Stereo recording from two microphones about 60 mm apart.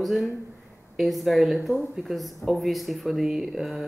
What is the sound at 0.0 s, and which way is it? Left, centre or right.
Speech, centre.